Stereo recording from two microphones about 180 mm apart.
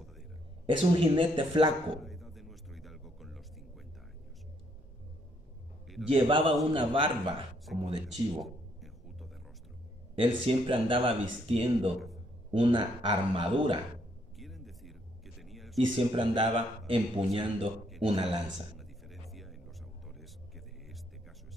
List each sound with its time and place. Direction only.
0.7 s a man's voice: 30° right (ahead or behind)
2.0 s a sound: centre (ahead or behind)
6.0 s a man's voice: 30° right (ahead or behind)
7.7 s speech: centre (ahead or behind)
8.1 s a sound: centre (ahead or behind)
10.1 s a man's voice: 30° right (ahead or behind)
14.4 s a sound: centre (ahead or behind)
15.8 s a man's voice: 25° right (ahead or behind)
18.8 s music: centre (ahead or behind)